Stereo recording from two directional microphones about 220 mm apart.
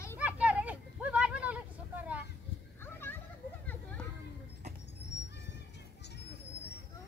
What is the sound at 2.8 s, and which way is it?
Children playing, 10° left (ahead or behind).